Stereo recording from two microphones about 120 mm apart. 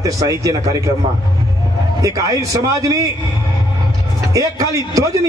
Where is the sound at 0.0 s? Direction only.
30° right (ahead or behind).